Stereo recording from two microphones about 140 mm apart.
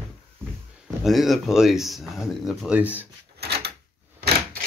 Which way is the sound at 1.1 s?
Centre (ahead or behind).